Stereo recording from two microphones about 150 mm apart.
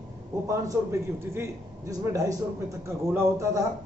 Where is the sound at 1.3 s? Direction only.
20° right (ahead or behind).